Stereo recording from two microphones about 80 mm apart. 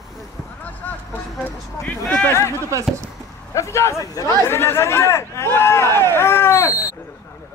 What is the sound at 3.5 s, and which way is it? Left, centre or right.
Speech, left.